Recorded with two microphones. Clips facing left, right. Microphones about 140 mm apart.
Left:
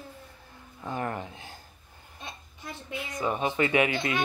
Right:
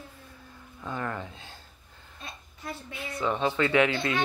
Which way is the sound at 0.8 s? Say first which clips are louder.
Left 1 dB; 25° left (ahead or behind).